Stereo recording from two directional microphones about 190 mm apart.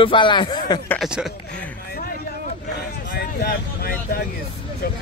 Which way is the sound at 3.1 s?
50° left (ahead or behind).